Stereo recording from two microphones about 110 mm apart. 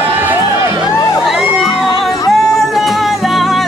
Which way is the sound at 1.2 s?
5° right (ahead or behind).